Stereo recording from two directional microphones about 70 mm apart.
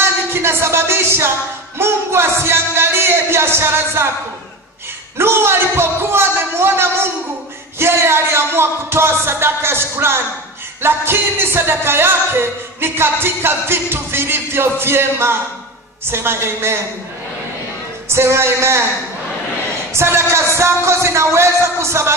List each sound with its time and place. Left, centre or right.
0.3 s music: right
5.1 s music: right
18.0 s music: right
19.9 s music: right